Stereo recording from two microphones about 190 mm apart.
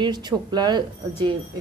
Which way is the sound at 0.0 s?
20° right (ahead or behind).